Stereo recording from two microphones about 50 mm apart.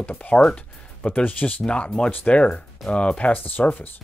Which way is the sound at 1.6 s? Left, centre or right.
Centre.